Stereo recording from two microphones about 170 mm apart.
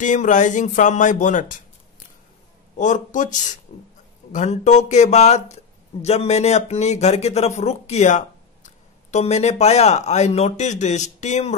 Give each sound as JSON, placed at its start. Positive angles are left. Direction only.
{"t": 0.0, "sound": "speech", "side_deg": 45}
{"t": 2.8, "sound": "speech", "side_deg": 45}